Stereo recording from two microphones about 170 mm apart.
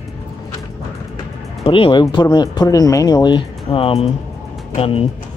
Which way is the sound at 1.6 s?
30° left (ahead or behind).